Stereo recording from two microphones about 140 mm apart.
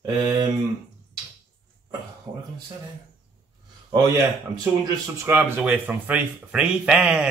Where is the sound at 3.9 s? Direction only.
30° right (ahead or behind).